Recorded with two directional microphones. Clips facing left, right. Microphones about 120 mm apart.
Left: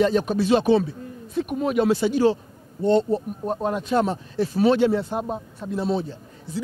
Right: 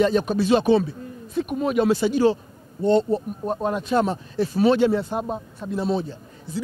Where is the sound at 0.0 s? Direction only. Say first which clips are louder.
Even; 20° right (ahead or behind).